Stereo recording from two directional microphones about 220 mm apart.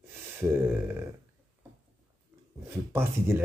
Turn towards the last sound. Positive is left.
turn(degrees=-10)  # may be behind; listen again after turning